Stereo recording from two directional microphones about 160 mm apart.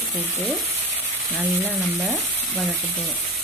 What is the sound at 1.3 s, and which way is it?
Frying, 10° left (ahead or behind).